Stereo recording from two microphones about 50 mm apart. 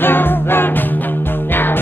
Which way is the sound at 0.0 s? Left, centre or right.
Left.